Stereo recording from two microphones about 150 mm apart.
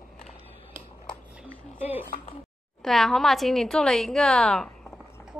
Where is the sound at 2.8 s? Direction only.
Centre (ahead or behind).